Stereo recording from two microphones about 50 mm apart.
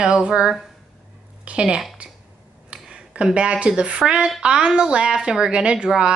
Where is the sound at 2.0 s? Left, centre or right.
Right.